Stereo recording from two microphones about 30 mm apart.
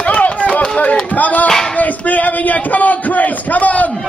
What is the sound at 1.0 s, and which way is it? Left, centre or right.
Music, left.